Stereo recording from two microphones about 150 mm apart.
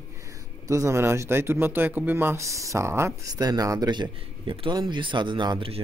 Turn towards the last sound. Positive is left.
turn(degrees=-35)  # may be behind; listen again after turning